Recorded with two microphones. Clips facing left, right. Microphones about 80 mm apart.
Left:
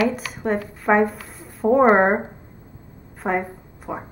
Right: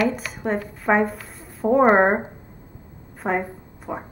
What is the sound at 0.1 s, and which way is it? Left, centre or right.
A woman's voice, centre.